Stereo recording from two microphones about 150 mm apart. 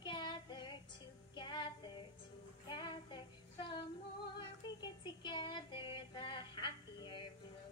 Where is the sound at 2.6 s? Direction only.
30° left (ahead or behind).